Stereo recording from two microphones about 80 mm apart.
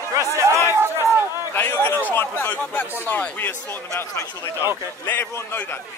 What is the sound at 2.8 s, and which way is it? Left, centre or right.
Speech, left.